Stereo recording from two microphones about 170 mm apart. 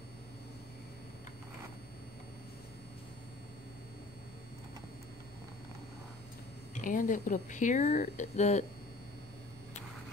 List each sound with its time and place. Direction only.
6.7 s speech: 50° left (ahead or behind)